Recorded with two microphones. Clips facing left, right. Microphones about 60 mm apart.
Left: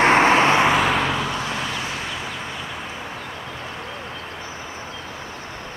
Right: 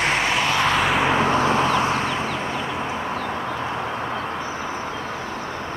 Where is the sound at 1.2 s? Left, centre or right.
Right.